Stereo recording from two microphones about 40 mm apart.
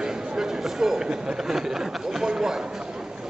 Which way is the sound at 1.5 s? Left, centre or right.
Centre.